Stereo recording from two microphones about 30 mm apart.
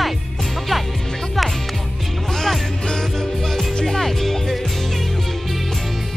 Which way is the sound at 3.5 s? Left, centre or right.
Centre.